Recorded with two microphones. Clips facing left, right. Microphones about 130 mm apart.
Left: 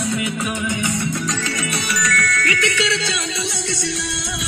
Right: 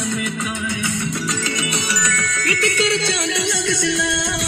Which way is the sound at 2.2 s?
30° right (ahead or behind).